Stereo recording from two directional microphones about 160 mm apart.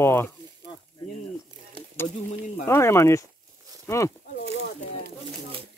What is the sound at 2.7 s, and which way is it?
Speech, 15° left (ahead or behind).